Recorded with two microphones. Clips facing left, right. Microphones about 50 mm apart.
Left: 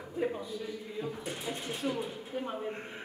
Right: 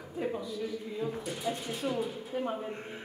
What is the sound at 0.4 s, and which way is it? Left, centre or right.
A man's voice, left.